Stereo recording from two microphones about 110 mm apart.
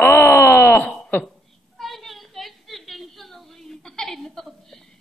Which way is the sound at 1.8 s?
Centre (ahead or behind).